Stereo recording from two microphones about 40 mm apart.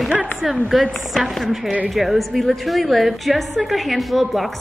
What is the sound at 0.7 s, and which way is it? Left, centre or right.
Speech, centre.